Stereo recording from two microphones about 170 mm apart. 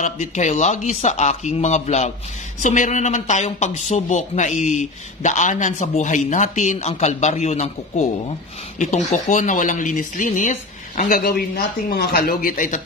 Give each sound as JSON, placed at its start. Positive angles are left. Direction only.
{"t": 0.0, "sound": "speech", "side_deg": 45}